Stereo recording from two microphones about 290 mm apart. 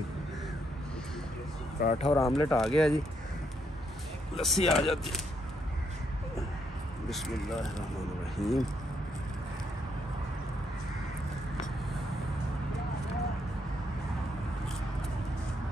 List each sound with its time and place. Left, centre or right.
1.8 s speech: left
2.0 s speech: centre
4.4 s speech: centre
7.1 s speech: centre